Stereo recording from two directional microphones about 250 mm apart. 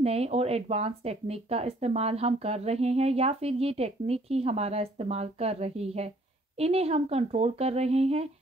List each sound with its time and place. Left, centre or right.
0.0 s speech: right